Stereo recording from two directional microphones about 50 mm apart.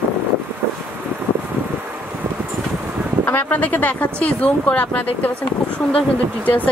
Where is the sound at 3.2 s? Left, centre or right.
Left.